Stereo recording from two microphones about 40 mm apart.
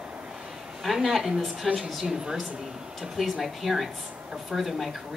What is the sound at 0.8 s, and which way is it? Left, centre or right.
Speech, centre.